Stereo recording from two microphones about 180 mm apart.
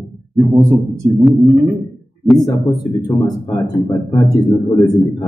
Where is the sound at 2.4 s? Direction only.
20° left (ahead or behind).